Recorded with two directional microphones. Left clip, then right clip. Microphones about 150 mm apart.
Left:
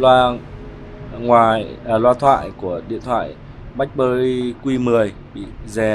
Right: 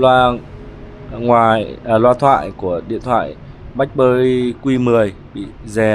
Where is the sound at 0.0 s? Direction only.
35° right (ahead or behind).